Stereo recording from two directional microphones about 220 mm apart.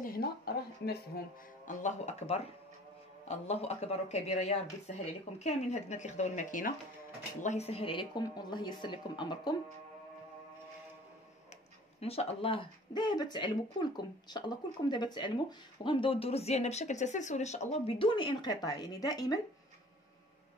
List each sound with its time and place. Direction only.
0.0 s speech: 45° left (ahead or behind)
1.7 s speech: 35° left (ahead or behind)
12.0 s speech: 30° left (ahead or behind)